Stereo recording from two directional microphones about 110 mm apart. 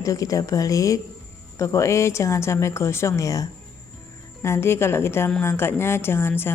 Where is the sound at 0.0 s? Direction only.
30° left (ahead or behind).